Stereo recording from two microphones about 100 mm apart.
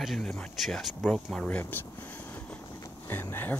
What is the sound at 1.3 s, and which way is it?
Speech, 15° left (ahead or behind).